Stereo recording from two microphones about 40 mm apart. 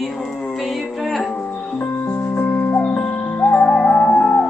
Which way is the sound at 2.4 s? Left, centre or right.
Left.